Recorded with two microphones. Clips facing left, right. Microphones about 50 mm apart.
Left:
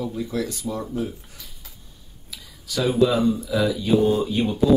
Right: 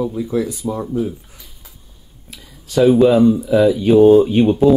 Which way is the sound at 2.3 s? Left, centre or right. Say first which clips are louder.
Right 9 dB; right.